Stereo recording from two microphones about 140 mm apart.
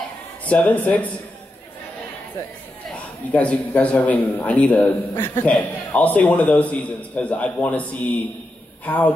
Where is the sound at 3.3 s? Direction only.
10° left (ahead or behind).